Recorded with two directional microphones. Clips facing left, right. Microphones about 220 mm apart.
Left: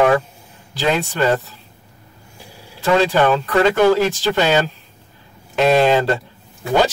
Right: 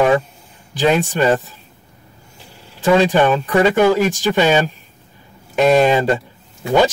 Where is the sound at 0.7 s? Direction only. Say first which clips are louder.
Right 3 dB; 15° right (ahead or behind).